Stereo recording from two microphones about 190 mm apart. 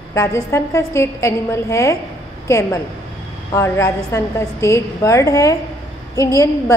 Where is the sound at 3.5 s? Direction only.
15° left (ahead or behind).